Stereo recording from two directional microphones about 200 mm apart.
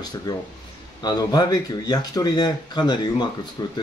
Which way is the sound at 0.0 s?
20° left (ahead or behind).